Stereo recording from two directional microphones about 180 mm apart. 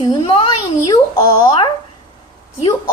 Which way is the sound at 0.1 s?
30° left (ahead or behind).